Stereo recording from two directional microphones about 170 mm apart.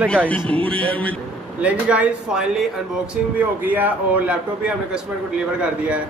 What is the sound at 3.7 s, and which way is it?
Speech, 10° right (ahead or behind).